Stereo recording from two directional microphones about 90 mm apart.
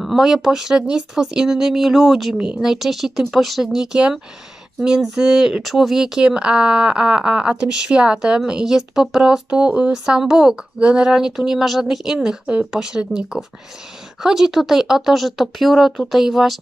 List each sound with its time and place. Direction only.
0.0 s speech: centre (ahead or behind)
2.3 s speech: 15° right (ahead or behind)
2.6 s speech: 5° right (ahead or behind)